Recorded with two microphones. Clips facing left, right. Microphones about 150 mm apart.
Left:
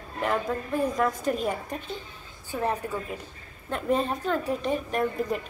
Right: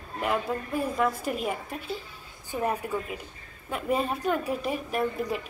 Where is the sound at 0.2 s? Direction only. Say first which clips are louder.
Left 1 dB; 5° right (ahead or behind).